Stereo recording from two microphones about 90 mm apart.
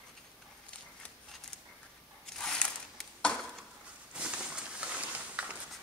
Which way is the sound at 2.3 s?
10° left (ahead or behind).